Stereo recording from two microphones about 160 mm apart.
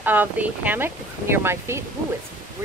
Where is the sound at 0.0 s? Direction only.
10° right (ahead or behind).